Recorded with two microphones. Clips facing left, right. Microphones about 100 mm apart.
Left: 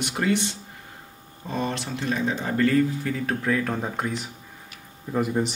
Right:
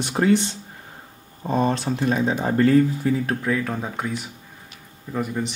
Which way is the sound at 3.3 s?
5° right (ahead or behind).